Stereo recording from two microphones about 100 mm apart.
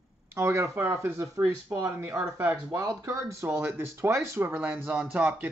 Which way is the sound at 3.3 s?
25° right (ahead or behind).